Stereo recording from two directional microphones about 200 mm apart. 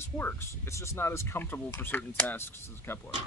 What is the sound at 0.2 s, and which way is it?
Speech, 10° left (ahead or behind).